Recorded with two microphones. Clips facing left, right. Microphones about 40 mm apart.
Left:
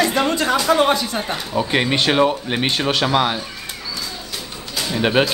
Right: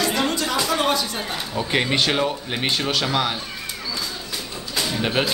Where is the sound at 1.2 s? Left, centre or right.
Centre.